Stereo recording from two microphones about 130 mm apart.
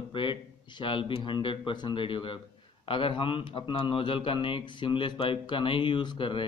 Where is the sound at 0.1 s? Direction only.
40° left (ahead or behind).